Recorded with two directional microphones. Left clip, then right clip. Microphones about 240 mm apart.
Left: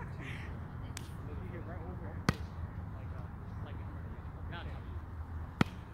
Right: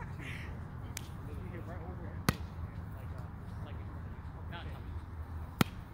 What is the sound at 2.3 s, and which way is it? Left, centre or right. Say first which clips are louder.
Basketball bounce: right 1 dB; right.